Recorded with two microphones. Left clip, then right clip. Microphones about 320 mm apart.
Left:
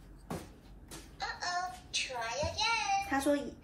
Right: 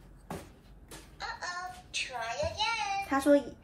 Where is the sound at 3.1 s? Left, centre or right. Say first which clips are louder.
Right 11 dB; right.